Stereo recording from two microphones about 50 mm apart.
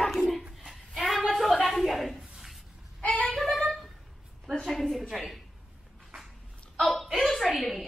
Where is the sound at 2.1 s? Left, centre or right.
Centre.